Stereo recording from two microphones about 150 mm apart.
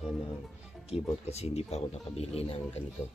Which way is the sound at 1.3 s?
45° left (ahead or behind).